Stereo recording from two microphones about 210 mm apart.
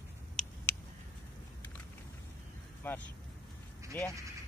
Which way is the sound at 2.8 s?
10° left (ahead or behind).